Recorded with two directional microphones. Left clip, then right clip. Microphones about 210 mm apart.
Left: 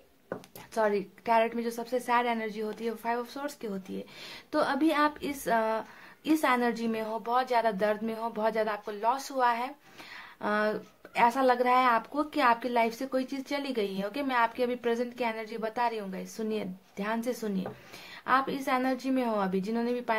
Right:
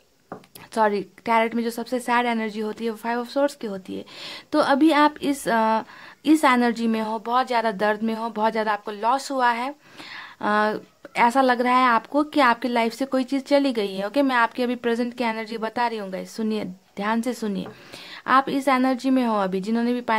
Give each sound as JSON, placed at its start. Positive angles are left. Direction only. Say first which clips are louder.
{"t": 0.7, "sound": "a woman's voice", "louder": "right 7 dB", "side_deg": -50}